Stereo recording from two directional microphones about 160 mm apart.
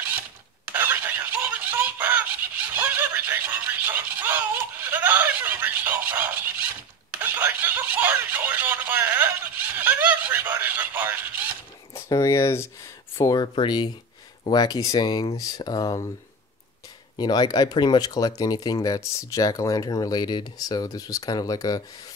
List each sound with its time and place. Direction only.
0.7 s a sound: 10° right (ahead or behind)
7.2 s snicker: 10° right (ahead or behind)
11.9 s speech: 20° left (ahead or behind)
17.2 s speech: 25° left (ahead or behind)